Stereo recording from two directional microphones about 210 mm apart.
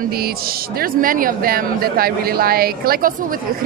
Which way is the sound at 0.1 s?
45° right (ahead or behind).